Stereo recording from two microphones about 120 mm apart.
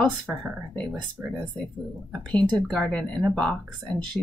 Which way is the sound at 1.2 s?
15° right (ahead or behind).